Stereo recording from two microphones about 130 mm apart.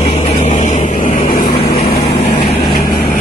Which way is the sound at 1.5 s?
50° left (ahead or behind).